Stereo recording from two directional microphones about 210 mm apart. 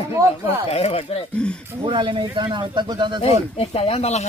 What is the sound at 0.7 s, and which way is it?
Speech, 30° left (ahead or behind).